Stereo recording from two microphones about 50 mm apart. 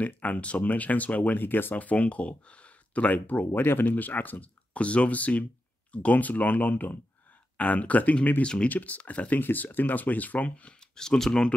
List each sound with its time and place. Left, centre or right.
0.0 s speech: left
1.4 s speech: left
8.6 s speech: left
9.4 s speech: left
11.0 s speech: centre